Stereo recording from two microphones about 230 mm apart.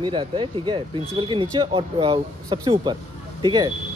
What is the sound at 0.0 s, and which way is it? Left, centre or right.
Speech, centre.